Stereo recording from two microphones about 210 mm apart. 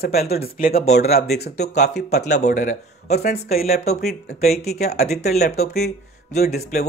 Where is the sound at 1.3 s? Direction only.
30° left (ahead or behind).